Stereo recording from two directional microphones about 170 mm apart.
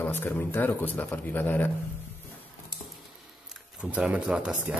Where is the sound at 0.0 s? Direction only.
10° left (ahead or behind).